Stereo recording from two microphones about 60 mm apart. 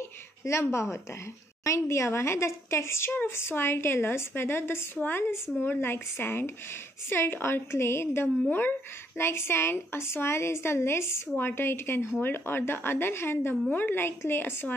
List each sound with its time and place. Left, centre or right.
0.5 s a woman's voice: left
4.9 s a woman's voice: left
8.5 s speech: left
9.2 s a woman's voice: left